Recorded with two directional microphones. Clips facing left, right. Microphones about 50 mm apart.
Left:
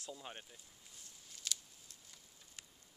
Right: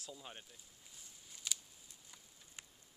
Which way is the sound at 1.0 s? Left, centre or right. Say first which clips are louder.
Even; centre.